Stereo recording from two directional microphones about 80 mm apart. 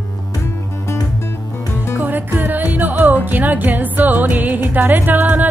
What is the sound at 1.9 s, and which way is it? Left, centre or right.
Music, right.